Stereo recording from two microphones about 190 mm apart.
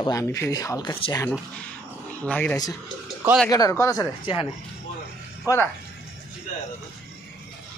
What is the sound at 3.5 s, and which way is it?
Speech, 20° left (ahead or behind).